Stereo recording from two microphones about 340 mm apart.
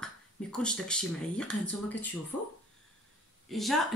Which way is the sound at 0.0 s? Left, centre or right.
Centre.